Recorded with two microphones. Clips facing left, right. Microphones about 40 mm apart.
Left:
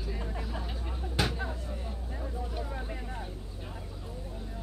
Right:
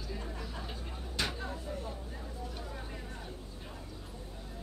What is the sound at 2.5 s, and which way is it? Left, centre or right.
Vehicle, centre.